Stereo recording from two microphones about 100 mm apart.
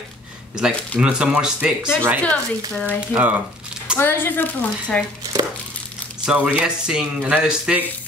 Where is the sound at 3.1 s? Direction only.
15° right (ahead or behind).